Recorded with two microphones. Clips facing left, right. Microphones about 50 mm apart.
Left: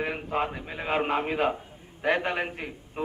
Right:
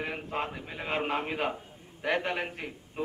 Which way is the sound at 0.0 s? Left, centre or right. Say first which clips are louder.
Left 5 dB; centre.